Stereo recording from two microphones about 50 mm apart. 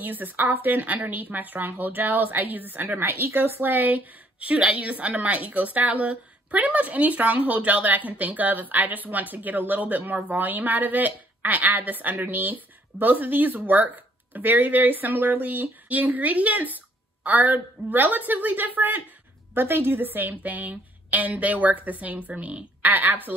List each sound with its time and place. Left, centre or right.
0.0 s a woman's voice: right